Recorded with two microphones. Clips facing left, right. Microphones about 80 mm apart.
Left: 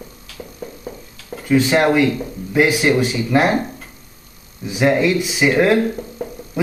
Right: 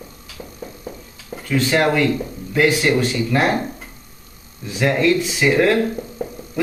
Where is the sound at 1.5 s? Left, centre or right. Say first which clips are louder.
Left 3 dB; centre.